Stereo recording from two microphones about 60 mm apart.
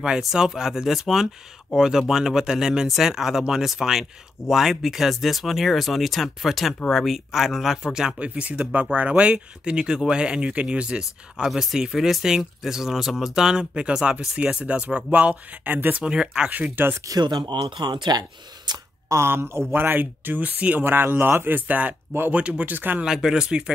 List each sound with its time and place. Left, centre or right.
0.2 s speech: centre; by 16.0 s right
16.0 s speech: centre
16.8 s speech: right
19.0 s speech: right
23.0 s speech: centre